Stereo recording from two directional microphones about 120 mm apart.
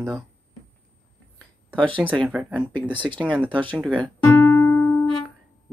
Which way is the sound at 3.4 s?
10° left (ahead or behind).